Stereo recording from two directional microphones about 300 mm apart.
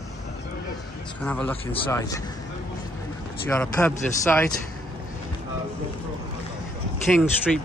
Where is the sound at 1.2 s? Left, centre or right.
Centre.